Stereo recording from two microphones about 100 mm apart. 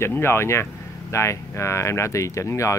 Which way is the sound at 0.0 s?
25° left (ahead or behind).